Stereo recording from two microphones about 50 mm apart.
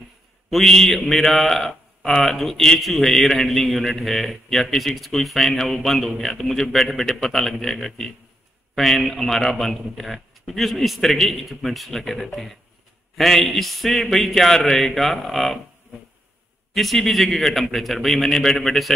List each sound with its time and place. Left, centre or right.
0.5 s a man's voice: centre
16.7 s a man's voice: centre